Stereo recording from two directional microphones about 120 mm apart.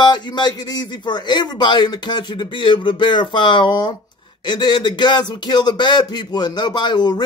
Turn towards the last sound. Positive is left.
turn(degrees=35)  # may be behind; listen again after turning